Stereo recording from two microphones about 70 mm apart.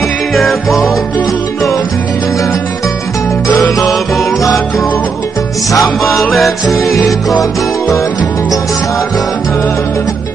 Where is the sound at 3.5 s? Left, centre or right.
Left.